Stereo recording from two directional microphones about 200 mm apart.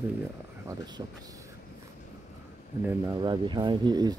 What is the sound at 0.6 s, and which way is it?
Speech, 20° right (ahead or behind).